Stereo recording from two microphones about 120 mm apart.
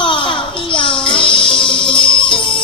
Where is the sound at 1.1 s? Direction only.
45° left (ahead or behind).